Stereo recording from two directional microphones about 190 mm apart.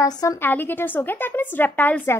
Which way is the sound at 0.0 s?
20° left (ahead or behind).